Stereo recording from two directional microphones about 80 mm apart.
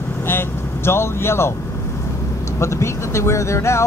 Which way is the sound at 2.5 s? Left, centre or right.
Left.